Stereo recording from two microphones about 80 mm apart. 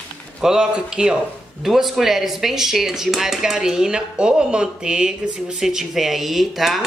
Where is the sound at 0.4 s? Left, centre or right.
Centre.